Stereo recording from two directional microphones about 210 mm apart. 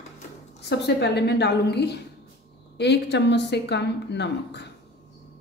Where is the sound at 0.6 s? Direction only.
50° left (ahead or behind).